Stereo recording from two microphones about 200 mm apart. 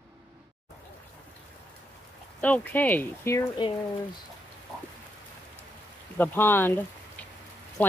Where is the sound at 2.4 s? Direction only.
10° left (ahead or behind).